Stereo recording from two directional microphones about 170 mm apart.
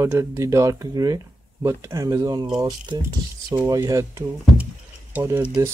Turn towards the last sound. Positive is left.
turn(degrees=-15)  # may be behind; listen again after turning